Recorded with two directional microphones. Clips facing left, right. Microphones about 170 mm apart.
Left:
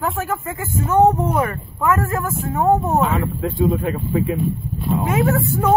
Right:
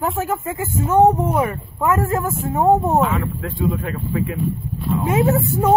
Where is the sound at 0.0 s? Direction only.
20° right (ahead or behind).